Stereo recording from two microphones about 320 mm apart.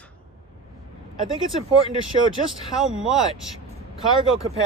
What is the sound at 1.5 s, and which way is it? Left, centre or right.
Speech, centre.